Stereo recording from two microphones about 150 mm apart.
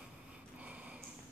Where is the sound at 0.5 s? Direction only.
10° right (ahead or behind).